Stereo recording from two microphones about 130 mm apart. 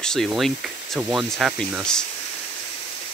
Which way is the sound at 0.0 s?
5° left (ahead or behind).